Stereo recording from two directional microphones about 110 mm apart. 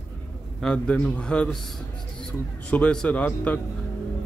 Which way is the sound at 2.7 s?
10° left (ahead or behind).